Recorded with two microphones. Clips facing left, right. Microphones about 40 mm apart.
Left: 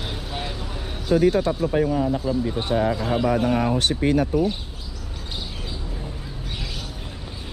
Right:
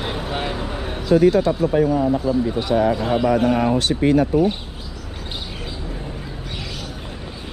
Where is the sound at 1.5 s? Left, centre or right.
Right.